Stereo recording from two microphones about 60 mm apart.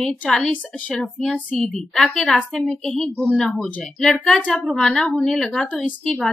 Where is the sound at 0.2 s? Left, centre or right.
Centre.